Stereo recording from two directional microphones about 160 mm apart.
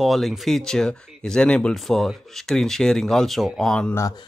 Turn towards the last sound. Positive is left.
turn(degrees=20)  # may be behind; listen again after turning